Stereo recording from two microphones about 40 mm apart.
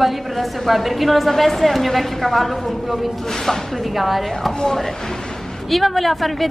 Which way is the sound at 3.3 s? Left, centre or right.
Centre.